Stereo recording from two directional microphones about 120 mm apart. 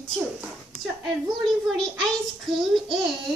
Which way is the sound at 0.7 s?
Centre (ahead or behind).